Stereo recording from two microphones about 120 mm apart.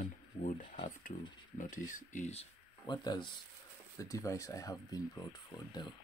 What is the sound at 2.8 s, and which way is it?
Speech, 35° left (ahead or behind).